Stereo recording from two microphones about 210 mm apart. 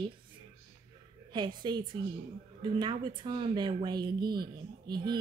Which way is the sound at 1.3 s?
20° right (ahead or behind).